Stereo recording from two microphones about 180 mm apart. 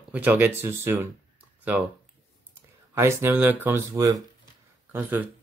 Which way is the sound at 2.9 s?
15° right (ahead or behind).